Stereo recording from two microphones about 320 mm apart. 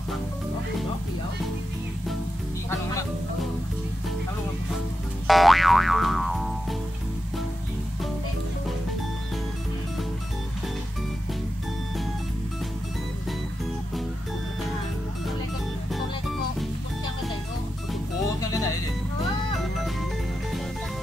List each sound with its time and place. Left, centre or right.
5.2 s music: centre
18.5 s music: centre